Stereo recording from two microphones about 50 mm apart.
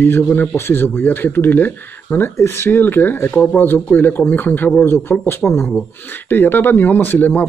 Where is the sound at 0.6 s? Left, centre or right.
Left.